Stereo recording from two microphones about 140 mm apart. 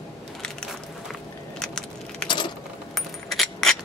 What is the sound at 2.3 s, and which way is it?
Keys jangling, 35° left (ahead or behind).